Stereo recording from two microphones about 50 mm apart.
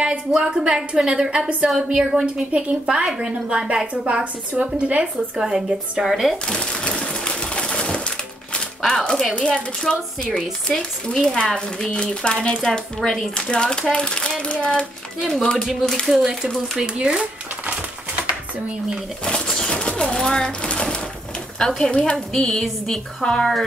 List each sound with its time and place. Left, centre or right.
0.0 s a woman's voice: centre
5.4 s a woman's voice: centre
6.3 s pigeon: centre
8.5 s a sound: centre
9.5 s a woman's voice: centre
15.1 s speech: centre
15.8 s a woman's voice: centre
16.7 s speech: centre
19.2 s a sound: centre
21.5 s a woman's voice: centre